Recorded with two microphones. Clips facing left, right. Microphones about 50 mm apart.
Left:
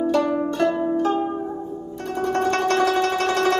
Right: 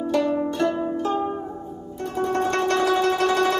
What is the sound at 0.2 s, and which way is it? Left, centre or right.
Zither, centre.